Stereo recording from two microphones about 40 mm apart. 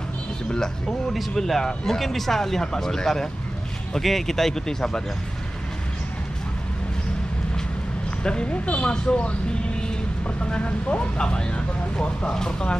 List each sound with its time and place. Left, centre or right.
0.8 s speech: centre
8.2 s speech: left